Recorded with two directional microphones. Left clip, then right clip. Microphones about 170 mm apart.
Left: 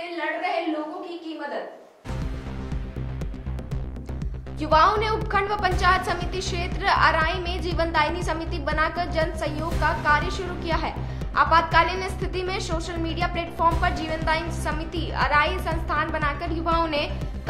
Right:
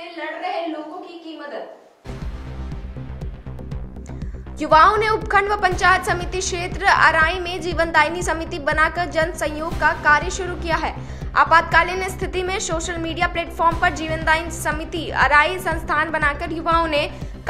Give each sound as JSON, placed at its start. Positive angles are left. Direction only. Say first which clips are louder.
{"t": 4.6, "sound": "a woman's voice", "louder": "right 5 dB", "side_deg": -20}